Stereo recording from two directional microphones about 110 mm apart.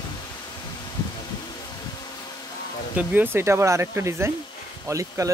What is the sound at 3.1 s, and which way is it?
Speech, 15° right (ahead or behind).